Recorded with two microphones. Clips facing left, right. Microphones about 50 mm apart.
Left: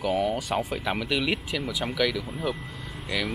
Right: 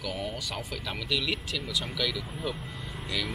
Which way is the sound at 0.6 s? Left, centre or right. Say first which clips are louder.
Left 8 dB; left.